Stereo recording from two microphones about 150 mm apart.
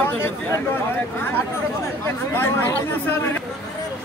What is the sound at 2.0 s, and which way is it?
Speech, 15° left (ahead or behind).